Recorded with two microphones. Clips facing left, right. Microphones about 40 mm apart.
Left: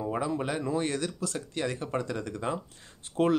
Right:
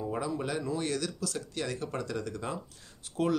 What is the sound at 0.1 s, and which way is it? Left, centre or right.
Speech, left.